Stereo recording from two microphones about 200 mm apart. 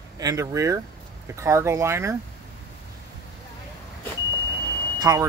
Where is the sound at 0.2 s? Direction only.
15° right (ahead or behind).